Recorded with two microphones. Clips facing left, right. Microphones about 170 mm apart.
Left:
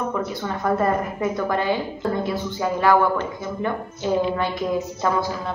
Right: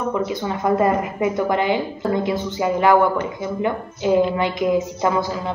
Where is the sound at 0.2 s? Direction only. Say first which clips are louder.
Right 3 dB; 15° right (ahead or behind).